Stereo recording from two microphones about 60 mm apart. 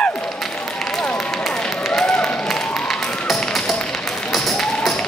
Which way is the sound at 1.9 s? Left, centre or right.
Centre.